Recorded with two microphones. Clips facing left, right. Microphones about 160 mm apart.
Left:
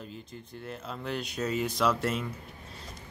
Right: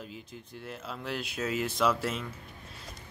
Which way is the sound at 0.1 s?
5° right (ahead or behind).